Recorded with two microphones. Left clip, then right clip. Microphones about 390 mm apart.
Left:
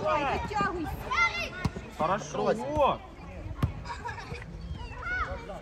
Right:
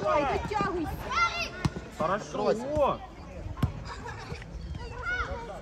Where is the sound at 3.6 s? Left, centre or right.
Centre.